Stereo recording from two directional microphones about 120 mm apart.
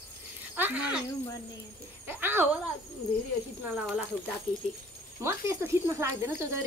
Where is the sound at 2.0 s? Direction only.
20° right (ahead or behind).